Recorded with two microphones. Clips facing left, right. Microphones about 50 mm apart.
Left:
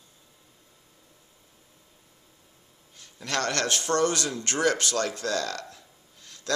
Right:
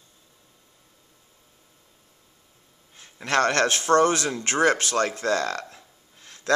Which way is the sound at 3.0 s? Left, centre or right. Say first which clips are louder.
Right 7 dB; right.